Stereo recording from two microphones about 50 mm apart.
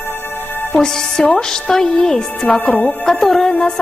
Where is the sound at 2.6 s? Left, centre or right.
Left.